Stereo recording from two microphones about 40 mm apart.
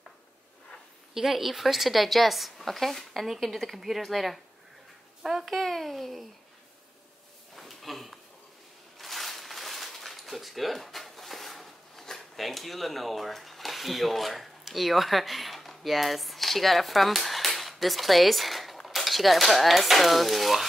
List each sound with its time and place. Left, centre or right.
1.1 s a woman's voice: centre
5.2 s speech: centre
5.5 s a woman's voice: centre
7.5 s a sound: centre